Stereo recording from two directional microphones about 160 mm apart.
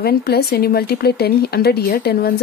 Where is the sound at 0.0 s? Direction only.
75° left (ahead or behind).